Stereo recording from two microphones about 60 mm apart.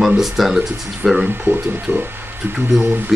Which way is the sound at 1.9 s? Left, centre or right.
Right.